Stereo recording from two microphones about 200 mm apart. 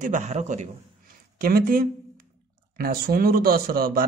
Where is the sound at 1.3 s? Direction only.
45° right (ahead or behind).